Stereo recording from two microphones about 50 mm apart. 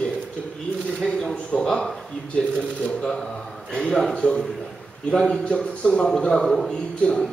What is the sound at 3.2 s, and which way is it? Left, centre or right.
A man's voice, centre.